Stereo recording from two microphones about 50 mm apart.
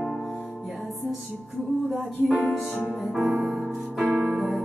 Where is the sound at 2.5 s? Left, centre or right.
Centre.